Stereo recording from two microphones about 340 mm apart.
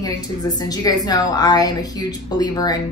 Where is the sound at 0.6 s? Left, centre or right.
Centre.